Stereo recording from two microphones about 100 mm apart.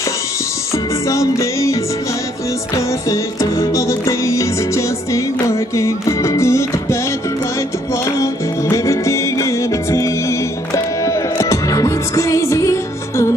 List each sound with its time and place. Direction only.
1.0 s music: 30° left (ahead or behind)